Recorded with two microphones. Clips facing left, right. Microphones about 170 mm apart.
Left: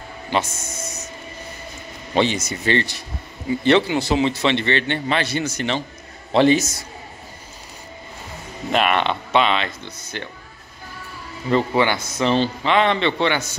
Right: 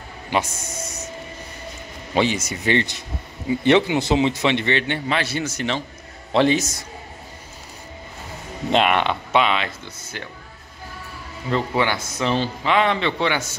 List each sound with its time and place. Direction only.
0.3 s speech: 15° right (ahead or behind)
2.1 s a man's voice: 10° right (ahead or behind)
8.7 s a man's voice: 15° right (ahead or behind)
11.5 s a man's voice: centre (ahead or behind)